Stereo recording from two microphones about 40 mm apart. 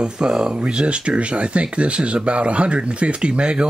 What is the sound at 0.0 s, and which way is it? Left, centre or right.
Speech, right.